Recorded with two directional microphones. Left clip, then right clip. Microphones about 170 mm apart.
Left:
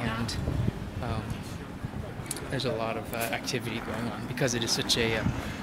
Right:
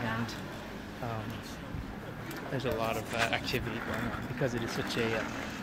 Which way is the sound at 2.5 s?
Centre (ahead or behind).